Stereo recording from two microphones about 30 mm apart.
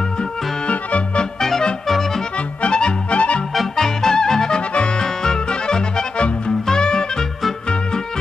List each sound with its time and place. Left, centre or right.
0.7 s music: left
1.9 s music: centre
2.7 s music: left
3.2 s music: left
3.7 s music: centre
4.6 s accordion: left
5.0 s accordion: left
6.1 s music: left